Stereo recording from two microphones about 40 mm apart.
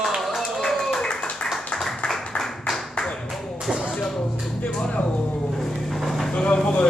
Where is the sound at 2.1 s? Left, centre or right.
Centre.